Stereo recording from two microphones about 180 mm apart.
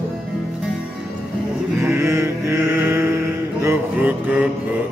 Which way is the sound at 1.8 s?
15° right (ahead or behind).